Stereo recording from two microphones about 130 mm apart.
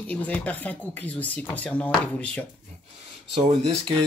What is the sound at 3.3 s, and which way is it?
Speech, 55° right (ahead or behind).